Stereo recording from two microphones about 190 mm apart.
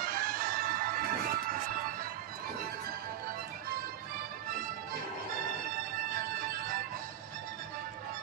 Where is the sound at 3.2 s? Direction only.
50° right (ahead or behind).